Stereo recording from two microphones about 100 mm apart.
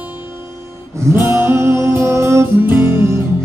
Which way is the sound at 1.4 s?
25° right (ahead or behind).